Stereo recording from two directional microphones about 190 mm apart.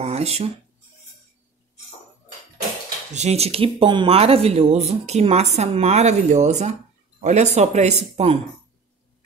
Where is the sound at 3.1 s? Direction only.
35° right (ahead or behind).